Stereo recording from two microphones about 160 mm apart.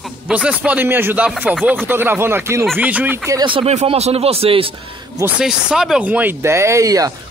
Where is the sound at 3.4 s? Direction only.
35° right (ahead or behind).